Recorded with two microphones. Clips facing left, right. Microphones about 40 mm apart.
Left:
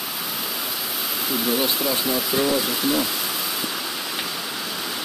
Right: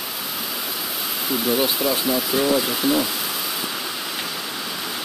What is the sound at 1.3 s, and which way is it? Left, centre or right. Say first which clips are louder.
Speech: right 2 dB; centre.